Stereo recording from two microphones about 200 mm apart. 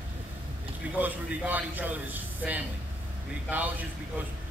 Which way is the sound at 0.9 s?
10° right (ahead or behind).